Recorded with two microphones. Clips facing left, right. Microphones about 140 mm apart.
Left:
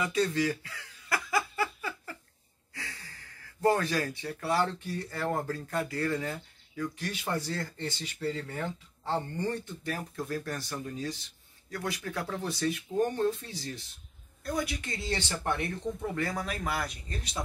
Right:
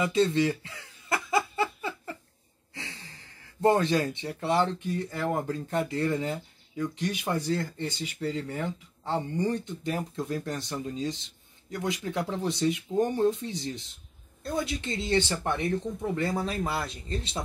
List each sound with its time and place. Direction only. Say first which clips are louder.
0.0 s chuckle: right 4 dB; 25° right (ahead or behind)
2.7 s speech: right 2 dB; 25° right (ahead or behind)